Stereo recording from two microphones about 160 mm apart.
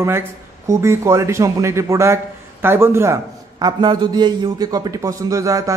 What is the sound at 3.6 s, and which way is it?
A man's voice, 25° right (ahead or behind).